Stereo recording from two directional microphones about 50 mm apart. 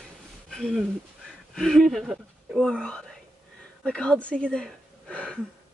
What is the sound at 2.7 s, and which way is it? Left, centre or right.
A woman's voice, centre.